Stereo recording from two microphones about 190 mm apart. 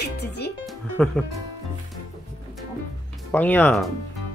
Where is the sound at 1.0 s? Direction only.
5° left (ahead or behind).